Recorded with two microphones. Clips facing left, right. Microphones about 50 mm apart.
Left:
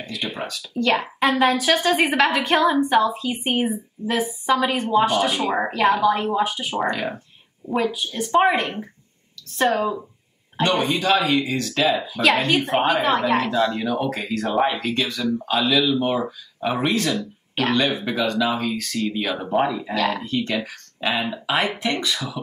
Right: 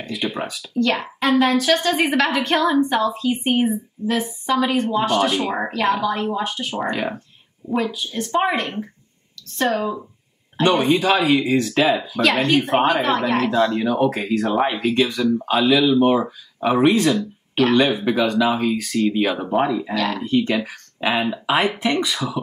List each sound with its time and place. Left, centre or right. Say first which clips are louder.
0.1 s speech: right 4 dB; centre
0.7 s a woman's voice: even; centre
6.9 s speech: right 1 dB; centre
7.6 s a woman's voice: even; centre
10.6 s speech: right 4 dB; centre
11.9 s speech: right 1 dB; centre
13.8 s speech: right 4 dB; centre
14.5 s speech: left 2 dB; centre
14.8 s speech: right 5 dB; centre
19.3 s a woman's voice: right 2 dB; centre
20.2 s speech: right 5 dB; centre